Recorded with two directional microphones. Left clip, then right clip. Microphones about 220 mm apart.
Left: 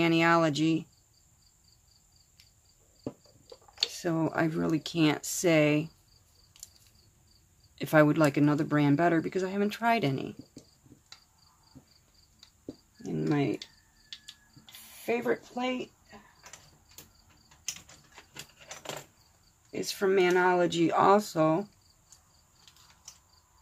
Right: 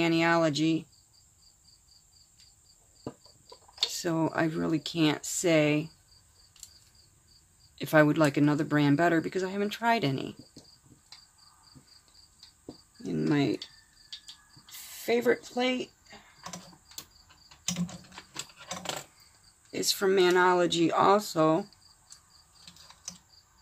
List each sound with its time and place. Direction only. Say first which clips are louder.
0.0 s speech: left 1 dB; 5° left (ahead or behind)
3.9 s speech: right 1 dB; 5° right (ahead or behind)
7.7 s speech: even; 5° left (ahead or behind)
13.0 s speech: right 2 dB; 15° right (ahead or behind)
15.0 s speech: right 4 dB; 20° right (ahead or behind)
19.7 s speech: right 1 dB; 15° right (ahead or behind)